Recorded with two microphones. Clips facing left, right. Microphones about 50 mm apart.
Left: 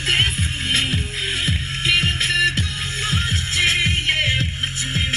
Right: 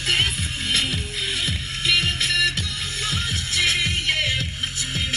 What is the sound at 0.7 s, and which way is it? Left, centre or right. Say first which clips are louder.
Music: left 2 dB; left.